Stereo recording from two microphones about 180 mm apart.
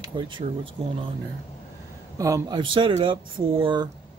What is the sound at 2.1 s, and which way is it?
Speech, 20° right (ahead or behind).